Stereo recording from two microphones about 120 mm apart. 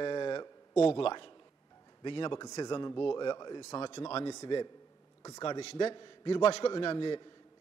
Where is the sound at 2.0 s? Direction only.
40° left (ahead or behind); by 5.9 s 60° left (ahead or behind).